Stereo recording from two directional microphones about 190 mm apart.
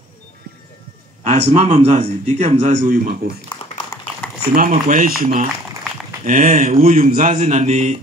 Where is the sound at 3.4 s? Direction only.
25° left (ahead or behind).